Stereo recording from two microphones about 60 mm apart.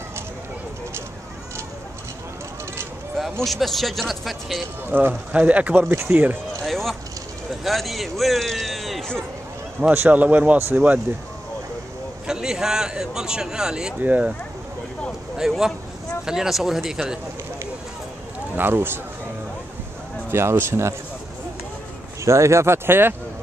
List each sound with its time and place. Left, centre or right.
3.4 s a man's voice: centre
4.8 s speech: right
5.3 s speech: right
5.8 s speech: right
6.6 s a sound: centre
7.6 s a man's voice: centre
9.8 s speech: right
12.3 s speech: centre
14.0 s speech: right
15.3 s speech: centre
18.6 s speech: right
20.2 s speech: right
22.2 s speech: right